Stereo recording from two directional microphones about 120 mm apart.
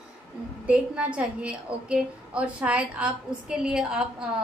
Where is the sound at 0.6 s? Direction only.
10° right (ahead or behind).